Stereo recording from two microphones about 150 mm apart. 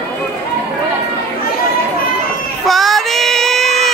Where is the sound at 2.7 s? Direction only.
Centre (ahead or behind).